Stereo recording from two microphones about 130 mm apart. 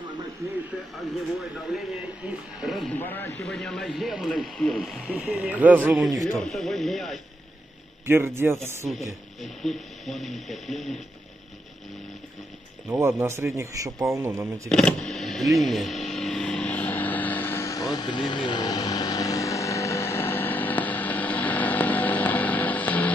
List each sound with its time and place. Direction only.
1.7 s speech: 5° right (ahead or behind)
2.9 s speech: 15° left (ahead or behind)
3.4 s speech: 5° left (ahead or behind); by 6.0 s 10° right (ahead or behind)
6.4 s speech: centre (ahead or behind)
8.1 s a man's voice: 20° right (ahead or behind)
8.8 s speech: centre (ahead or behind)
12.8 s a man's voice: 20° right (ahead or behind)
14.7 s speech: 5° left (ahead or behind)
16.1 s vehicle: 5° left (ahead or behind)